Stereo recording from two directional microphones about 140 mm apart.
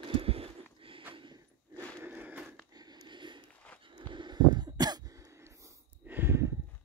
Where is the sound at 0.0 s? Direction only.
40° right (ahead or behind).